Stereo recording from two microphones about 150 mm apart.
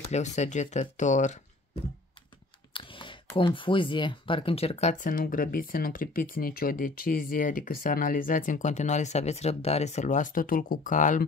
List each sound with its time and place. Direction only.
0.1 s speech: 50° left (ahead or behind)
2.7 s clicking: 35° left (ahead or behind)
3.3 s speech: 35° left (ahead or behind); by 11.2 s 60° left (ahead or behind)